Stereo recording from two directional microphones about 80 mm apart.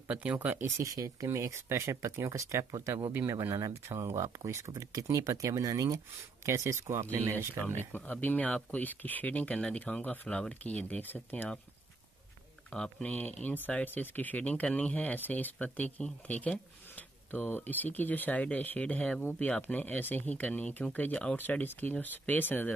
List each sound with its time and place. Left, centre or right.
0.1 s speech: centre
0.7 s speech: right
3.5 s speech: right
3.9 s speech: right
7.9 s speech: left
12.7 s speech: centre
21.4 s speech: left